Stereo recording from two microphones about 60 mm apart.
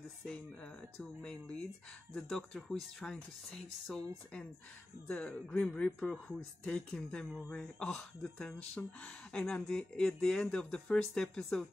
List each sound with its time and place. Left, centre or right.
0.9 s speech: centre
5.1 s speech: left